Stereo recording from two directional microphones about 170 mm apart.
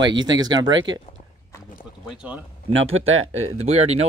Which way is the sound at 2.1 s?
5° right (ahead or behind).